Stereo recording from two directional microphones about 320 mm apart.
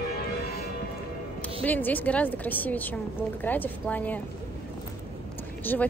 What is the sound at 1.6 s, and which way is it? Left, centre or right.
Speech, centre.